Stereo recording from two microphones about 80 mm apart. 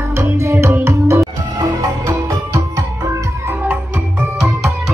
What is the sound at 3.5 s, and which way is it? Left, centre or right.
Music, centre.